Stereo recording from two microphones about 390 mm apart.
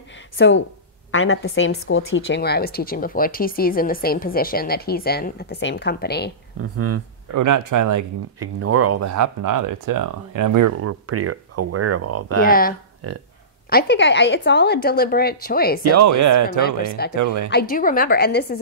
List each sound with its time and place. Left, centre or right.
0.4 s a woman's voice: left
6.6 s speech: right
7.3 s speech: right
8.5 s speech: right
10.8 s speech: right
12.4 s a woman's voice: left
13.0 s speech: right
13.7 s a woman's voice: left
15.8 s speech: right
16.5 s a woman's voice: left
17.1 s speech: right
17.5 s a woman's voice: left